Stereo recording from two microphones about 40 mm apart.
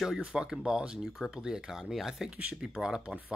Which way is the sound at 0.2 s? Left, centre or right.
Right.